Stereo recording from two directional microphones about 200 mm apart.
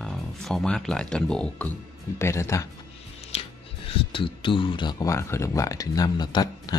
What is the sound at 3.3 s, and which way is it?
Music, 30° left (ahead or behind).